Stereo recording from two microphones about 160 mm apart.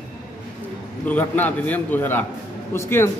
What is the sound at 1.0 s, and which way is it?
A man's voice, 10° left (ahead or behind).